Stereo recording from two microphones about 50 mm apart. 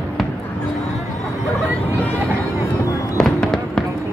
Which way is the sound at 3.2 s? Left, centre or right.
Centre.